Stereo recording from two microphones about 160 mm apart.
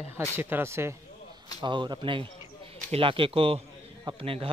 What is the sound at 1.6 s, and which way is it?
Speech, 30° right (ahead or behind).